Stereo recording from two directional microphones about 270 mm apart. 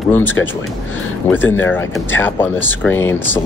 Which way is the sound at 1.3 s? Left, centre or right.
Centre.